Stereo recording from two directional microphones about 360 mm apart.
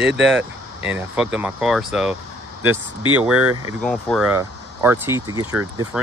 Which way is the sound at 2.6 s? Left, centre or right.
Right.